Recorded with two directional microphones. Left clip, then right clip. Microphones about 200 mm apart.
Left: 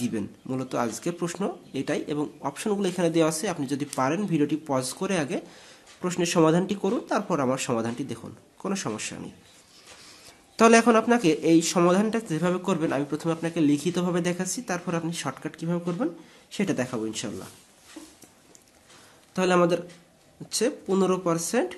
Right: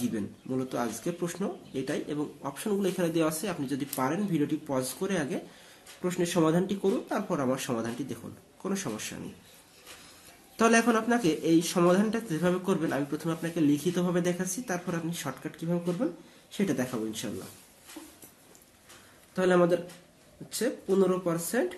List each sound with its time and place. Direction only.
0.0 s speech: 40° left (ahead or behind)
10.5 s speech: 35° left (ahead or behind)
19.3 s speech: 45° left (ahead or behind)